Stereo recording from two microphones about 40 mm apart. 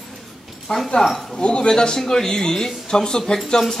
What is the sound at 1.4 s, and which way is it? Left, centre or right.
A man's voice, left.